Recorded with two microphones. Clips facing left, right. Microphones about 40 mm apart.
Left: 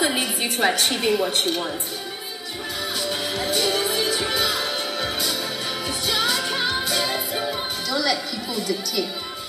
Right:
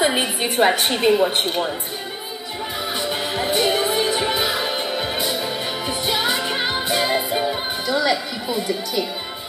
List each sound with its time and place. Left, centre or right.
0.0 s a woman's voice: right
3.0 s music: right